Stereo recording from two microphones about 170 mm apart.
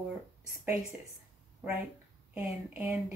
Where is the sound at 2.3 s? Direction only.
10° right (ahead or behind).